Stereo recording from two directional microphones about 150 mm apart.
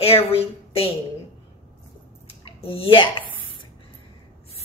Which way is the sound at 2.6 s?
40° left (ahead or behind).